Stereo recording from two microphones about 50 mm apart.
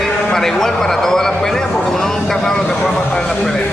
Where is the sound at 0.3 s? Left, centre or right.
Centre.